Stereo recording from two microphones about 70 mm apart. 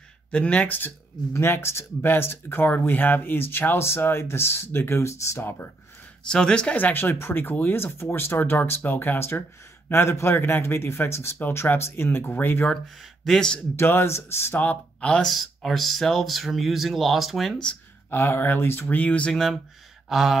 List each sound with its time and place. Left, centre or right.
0.3 s speech: centre
1.3 s speech: left
6.2 s speech: centre
6.8 s speech: left
13.2 s speech: centre
13.7 s speech: left
14.6 s speech: centre
15.2 s speech: centre
18.1 s speech: left
19.3 s speech: centre
20.1 s a sound: centre